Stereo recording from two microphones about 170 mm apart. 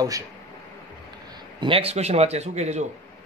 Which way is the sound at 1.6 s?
35° right (ahead or behind).